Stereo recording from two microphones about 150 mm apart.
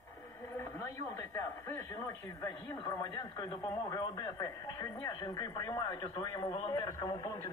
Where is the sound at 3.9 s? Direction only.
25° left (ahead or behind).